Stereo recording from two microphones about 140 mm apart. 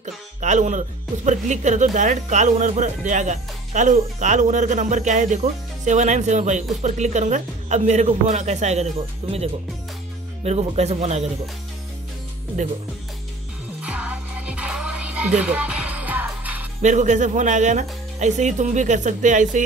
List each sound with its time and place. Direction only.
0.0 s speech: 60° right (ahead or behind)
10.4 s speech: 50° right (ahead or behind)
13.7 s music: 10° right (ahead or behind)
16.8 s speech: 60° right (ahead or behind)